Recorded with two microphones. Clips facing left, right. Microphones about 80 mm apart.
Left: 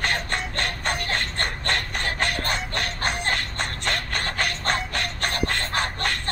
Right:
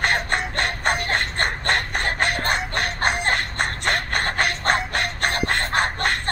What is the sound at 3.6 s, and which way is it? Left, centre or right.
Shuffle, right.